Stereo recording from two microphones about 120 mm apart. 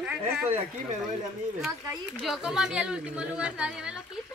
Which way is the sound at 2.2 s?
Centre (ahead or behind).